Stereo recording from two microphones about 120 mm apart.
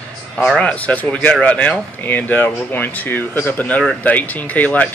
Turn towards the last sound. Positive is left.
turn(degrees=10)  # may be behind; listen again after turning